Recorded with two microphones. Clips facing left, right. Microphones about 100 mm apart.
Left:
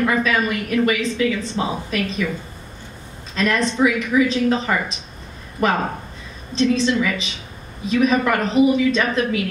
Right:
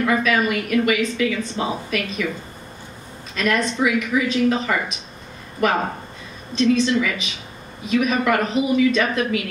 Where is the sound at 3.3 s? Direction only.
30° left (ahead or behind).